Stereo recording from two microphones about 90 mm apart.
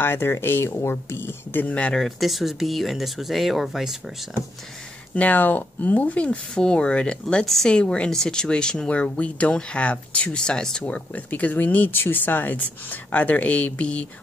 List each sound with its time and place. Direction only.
0.0 s speech: 25° left (ahead or behind)
2.0 s speech: centre (ahead or behind)
5.1 s speech: 20° left (ahead or behind)